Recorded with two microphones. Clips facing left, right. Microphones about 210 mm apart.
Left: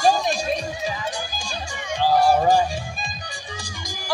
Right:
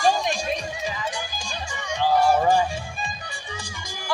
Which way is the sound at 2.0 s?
35° left (ahead or behind).